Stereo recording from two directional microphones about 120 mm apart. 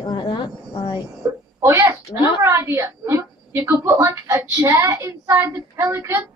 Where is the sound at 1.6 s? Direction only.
20° right (ahead or behind).